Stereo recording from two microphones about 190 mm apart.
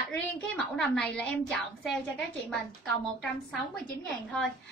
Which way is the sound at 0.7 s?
5° left (ahead or behind).